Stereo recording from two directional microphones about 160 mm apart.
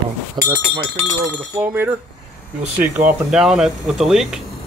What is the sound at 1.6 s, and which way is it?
Speech, 15° right (ahead or behind).